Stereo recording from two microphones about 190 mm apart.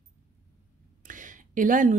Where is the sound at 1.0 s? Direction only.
45° right (ahead or behind).